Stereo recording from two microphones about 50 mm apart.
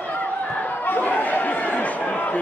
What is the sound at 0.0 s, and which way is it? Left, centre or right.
Chatter, left.